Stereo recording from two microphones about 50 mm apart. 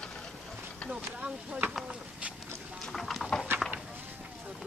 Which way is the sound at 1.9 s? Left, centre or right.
Right.